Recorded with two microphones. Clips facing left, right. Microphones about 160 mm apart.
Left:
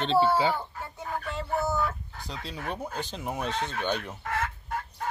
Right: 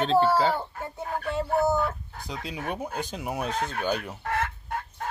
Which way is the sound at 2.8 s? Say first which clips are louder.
Right 2 dB; 10° right (ahead or behind).